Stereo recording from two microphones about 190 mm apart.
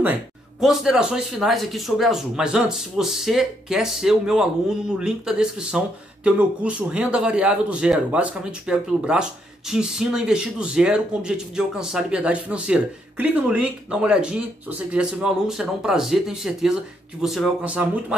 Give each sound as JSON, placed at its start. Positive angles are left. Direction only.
{"t": 0.0, "sound": "speech", "side_deg": -5}